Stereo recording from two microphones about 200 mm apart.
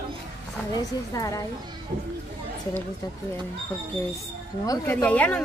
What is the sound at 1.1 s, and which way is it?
Speech, 15° left (ahead or behind).